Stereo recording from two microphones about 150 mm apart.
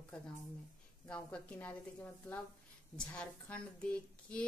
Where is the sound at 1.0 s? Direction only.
5° left (ahead or behind).